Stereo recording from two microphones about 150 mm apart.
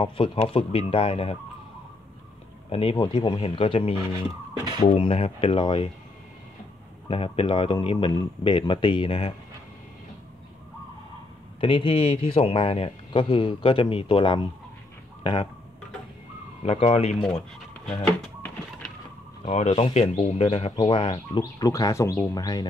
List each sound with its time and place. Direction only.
0.0 s speech: 40° left (ahead or behind)
2.7 s speech: 40° left (ahead or behind)
7.1 s speech: 35° left (ahead or behind)
11.6 s speech: 35° left (ahead or behind)
16.6 s speech: 40° left (ahead or behind)
17.8 s a sound: 5° left (ahead or behind)
19.4 s speech: 45° left (ahead or behind); by 22.7 s 25° left (ahead or behind)